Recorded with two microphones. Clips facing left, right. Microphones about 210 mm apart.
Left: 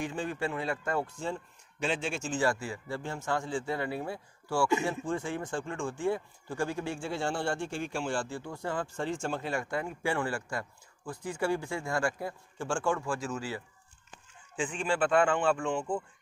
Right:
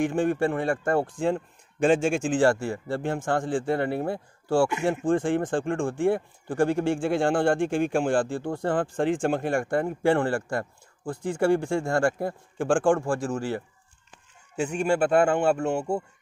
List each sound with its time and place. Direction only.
0.0 s a man's voice: 50° right (ahead or behind); by 7.0 s 75° right (ahead or behind)
7.0 s speech: 55° right (ahead or behind)
14.6 s speech: 45° right (ahead or behind)